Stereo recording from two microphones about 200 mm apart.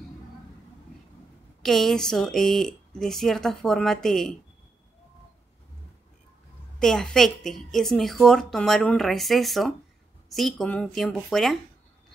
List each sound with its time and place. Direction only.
1.6 s a woman's voice: centre (ahead or behind)
6.8 s a woman's voice: 5° left (ahead or behind)